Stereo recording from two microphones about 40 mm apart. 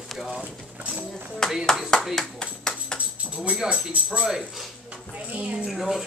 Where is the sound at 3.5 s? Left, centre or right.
Centre.